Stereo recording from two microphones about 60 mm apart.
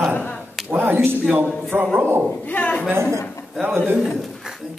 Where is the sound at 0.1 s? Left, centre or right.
Left.